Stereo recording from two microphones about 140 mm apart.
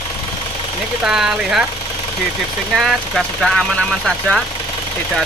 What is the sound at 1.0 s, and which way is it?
Speech, 5° right (ahead or behind).